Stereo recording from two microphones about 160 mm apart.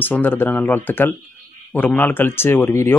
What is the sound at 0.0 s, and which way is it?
Speech, 10° left (ahead or behind).